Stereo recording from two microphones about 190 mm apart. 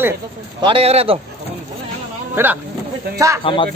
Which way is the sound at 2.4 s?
10° right (ahead or behind).